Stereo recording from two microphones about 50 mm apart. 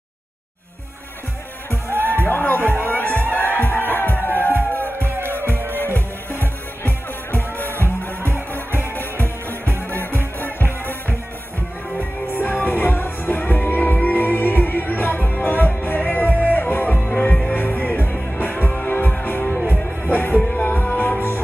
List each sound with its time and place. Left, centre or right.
2.2 s music: left
3.1 s music: right
3.6 s music: left
4.9 s music: right
5.8 s music: left
9.8 s music: left